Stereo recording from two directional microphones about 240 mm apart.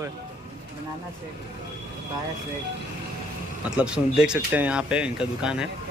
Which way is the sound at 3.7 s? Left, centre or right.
Centre.